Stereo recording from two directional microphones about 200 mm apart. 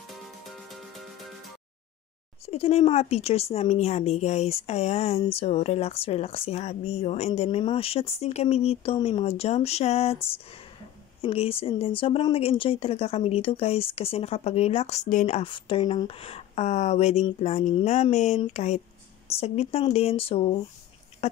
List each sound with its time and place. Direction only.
0.1 s music: centre (ahead or behind)
2.4 s speech: 30° left (ahead or behind)
11.1 s speech: 30° left (ahead or behind)